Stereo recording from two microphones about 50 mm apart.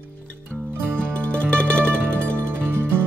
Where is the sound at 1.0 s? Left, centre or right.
Left.